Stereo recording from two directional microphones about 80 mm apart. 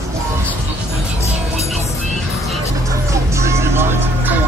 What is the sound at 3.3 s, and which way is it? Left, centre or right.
Music, right.